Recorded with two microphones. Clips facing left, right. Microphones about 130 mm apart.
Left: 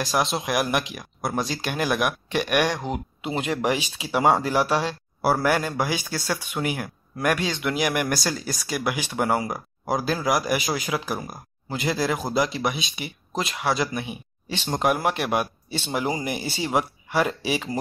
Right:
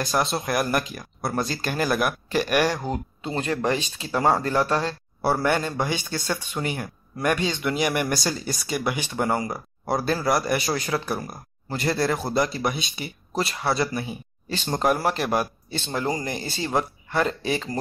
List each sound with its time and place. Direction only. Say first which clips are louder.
0.0 s speech: even; centre (ahead or behind)
2.9 s speech: even; 10° left (ahead or behind)